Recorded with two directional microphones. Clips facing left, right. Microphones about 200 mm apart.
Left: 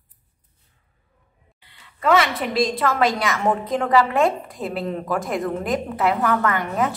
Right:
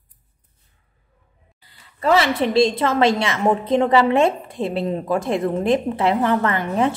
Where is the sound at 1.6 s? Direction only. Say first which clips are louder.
Right 1 dB; 35° right (ahead or behind).